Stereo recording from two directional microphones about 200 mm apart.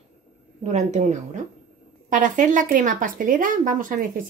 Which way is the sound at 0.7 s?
35° right (ahead or behind).